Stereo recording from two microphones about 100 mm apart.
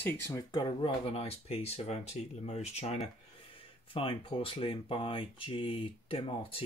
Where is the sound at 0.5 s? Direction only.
50° left (ahead or behind).